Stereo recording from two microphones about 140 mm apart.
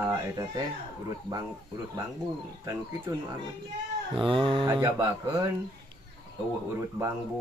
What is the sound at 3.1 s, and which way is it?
Mantra, 25° right (ahead or behind).